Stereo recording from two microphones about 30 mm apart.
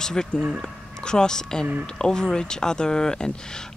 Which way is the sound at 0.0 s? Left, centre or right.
Left.